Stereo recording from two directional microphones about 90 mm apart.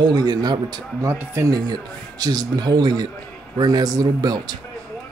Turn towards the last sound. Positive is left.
turn(degrees=-45)  # may be behind; listen again after turning